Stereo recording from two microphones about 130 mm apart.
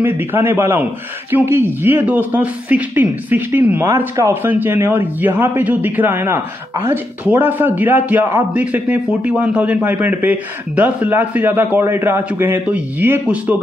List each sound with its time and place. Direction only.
0.0 s speech: 15° right (ahead or behind)